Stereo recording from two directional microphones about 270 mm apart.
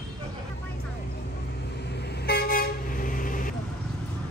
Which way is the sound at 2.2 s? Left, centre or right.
Left.